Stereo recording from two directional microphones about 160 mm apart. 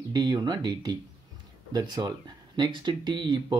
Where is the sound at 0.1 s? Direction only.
25° right (ahead or behind).